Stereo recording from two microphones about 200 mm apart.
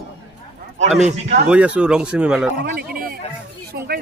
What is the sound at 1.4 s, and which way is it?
Speech, 5° right (ahead or behind).